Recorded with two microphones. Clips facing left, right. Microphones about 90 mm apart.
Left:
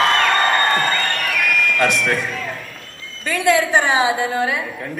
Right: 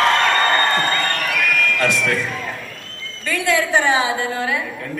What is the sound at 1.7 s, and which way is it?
Speech, 15° left (ahead or behind).